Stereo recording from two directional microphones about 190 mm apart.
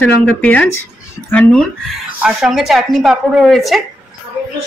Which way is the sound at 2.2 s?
5° right (ahead or behind).